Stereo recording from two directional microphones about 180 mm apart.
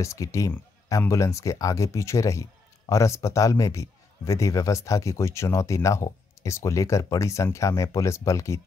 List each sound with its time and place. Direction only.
0.0 s a man's voice: 15° left (ahead or behind)